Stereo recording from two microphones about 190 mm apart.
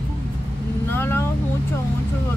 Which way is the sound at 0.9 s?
10° left (ahead or behind).